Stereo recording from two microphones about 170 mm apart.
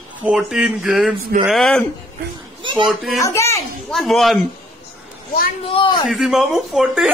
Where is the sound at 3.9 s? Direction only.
Centre (ahead or behind).